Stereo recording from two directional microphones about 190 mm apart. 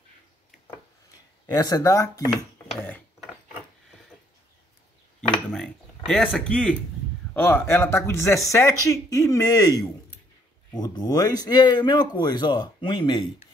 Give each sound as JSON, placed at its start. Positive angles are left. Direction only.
{"t": 1.5, "sound": "speech", "side_deg": 20}
{"t": 5.3, "sound": "dishes", "side_deg": 5}
{"t": 7.3, "sound": "speech", "side_deg": 10}